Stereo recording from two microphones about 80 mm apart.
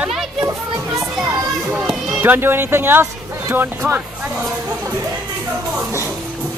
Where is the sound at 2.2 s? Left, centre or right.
Right.